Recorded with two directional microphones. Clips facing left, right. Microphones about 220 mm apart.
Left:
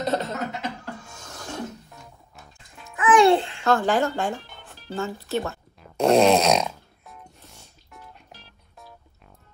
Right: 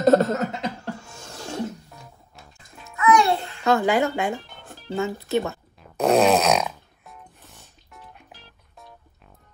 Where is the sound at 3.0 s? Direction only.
30° left (ahead or behind).